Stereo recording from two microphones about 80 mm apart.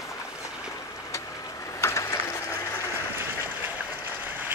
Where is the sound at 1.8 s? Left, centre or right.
Left.